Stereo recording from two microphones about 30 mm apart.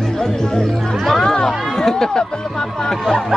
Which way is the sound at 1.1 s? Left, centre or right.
Left.